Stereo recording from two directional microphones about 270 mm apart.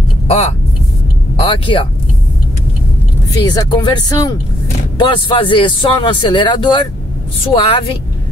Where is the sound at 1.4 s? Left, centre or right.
Centre.